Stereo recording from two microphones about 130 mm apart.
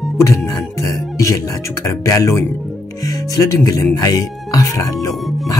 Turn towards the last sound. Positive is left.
turn(degrees=25)  # may be behind; listen again after turning